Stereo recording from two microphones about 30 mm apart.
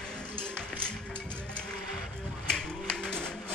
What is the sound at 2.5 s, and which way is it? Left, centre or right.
Music, left.